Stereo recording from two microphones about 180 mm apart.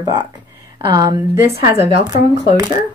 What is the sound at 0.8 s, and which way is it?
Speech, 20° right (ahead or behind).